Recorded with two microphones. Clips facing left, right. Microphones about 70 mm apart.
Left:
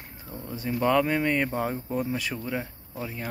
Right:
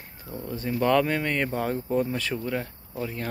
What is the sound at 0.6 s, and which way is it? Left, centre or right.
Speech, centre.